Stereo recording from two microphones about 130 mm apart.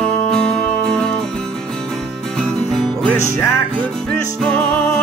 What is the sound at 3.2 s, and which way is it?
Music, 20° left (ahead or behind).